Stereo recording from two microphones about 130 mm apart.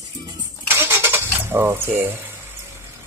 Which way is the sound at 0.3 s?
20° right (ahead or behind).